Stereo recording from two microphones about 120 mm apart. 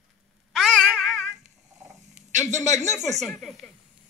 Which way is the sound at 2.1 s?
75° right (ahead or behind).